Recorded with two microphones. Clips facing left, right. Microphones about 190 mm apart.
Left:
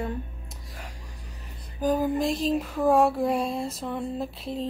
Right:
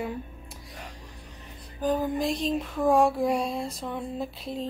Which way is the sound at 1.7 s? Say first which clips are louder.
Left 2 dB; 10° left (ahead or behind).